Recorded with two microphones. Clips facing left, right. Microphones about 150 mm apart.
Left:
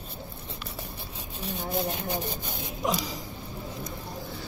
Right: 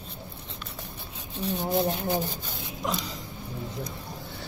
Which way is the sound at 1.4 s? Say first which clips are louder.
Right 5 dB; 10° right (ahead or behind).